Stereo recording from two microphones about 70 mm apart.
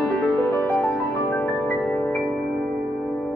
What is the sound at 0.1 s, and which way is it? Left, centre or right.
Music, left.